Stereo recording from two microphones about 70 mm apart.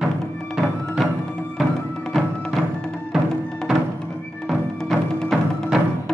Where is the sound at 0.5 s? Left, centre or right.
Centre.